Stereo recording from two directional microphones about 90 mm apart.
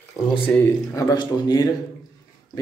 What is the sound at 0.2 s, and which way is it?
Speech, 30° left (ahead or behind).